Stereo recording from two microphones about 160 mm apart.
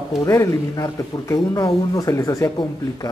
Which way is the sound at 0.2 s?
20° left (ahead or behind).